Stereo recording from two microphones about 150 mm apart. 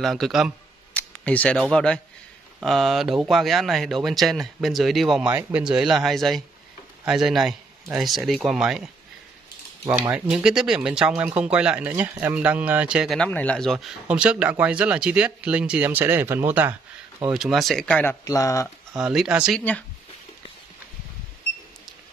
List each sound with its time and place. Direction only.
0.0 s speech: centre (ahead or behind)
0.9 s a man's voice: 10° left (ahead or behind)
10.1 s speech: 5° right (ahead or behind)
13.3 s speech: 10° left (ahead or behind); by 16.7 s 15° right (ahead or behind)
17.2 s speech: 5° right (ahead or behind)
18.2 s speech: 20° left (ahead or behind)
18.9 s speech: 5° right (ahead or behind)